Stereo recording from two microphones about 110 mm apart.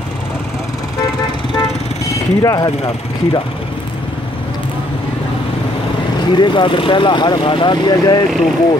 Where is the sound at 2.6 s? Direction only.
50° left (ahead or behind).